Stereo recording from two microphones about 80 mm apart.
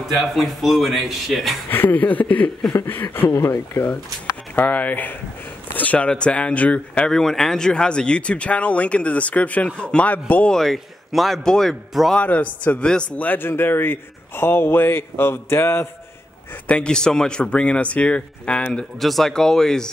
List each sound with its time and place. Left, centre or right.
0.1 s speech: centre
1.7 s a man's voice: left
3.3 s speech: left
4.6 s a man's voice: centre
10.5 s speech: centre
12.2 s a man's voice: centre
16.6 s speech: centre
18.9 s speech: centre